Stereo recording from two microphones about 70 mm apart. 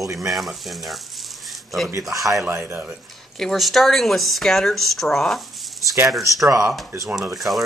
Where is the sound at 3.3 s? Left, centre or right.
Centre.